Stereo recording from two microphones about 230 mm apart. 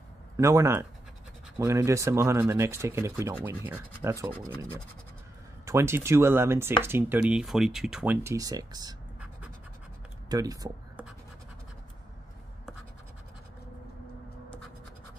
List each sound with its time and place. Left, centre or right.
0.4 s speech: centre
5.7 s speech: centre
10.3 s speech: centre